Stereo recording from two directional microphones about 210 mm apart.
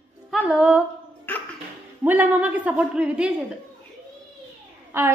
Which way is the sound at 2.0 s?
10° right (ahead or behind).